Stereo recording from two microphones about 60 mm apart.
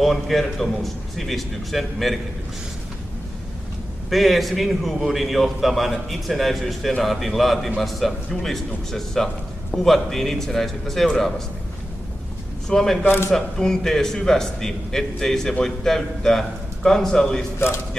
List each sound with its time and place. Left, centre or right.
0.0 s a man's voice: centre
4.1 s a man's voice: centre
12.6 s a man's voice: centre
13.0 s speech: left
13.3 s a man's voice: centre